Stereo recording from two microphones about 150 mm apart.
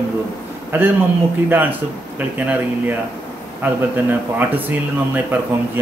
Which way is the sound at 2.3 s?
10° right (ahead or behind).